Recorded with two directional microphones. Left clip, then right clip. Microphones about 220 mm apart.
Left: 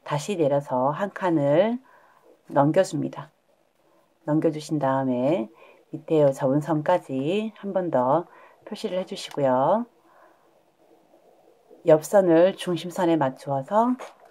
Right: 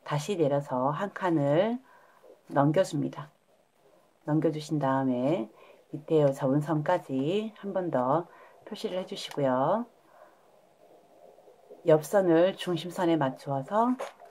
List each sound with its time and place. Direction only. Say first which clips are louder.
0.0 s speech: left 4 dB; 20° left (ahead or behind)
4.3 s speech: left 5 dB; 20° left (ahead or behind)
11.8 s speech: left 5 dB; 25° left (ahead or behind)